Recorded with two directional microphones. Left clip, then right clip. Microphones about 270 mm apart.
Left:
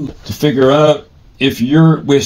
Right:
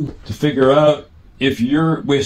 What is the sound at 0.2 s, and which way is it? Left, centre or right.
Speech, left.